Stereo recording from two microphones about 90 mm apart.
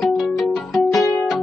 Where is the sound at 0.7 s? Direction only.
Centre (ahead or behind).